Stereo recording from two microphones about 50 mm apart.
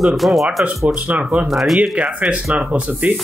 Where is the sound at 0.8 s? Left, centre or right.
Right.